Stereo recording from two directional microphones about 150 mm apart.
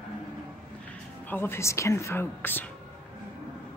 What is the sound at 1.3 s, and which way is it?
Speech, 15° left (ahead or behind).